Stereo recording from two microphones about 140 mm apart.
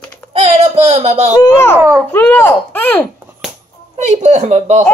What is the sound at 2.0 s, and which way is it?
Speech, 15° left (ahead or behind).